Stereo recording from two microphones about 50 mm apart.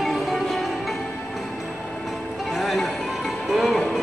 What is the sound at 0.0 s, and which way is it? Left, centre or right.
Music, centre.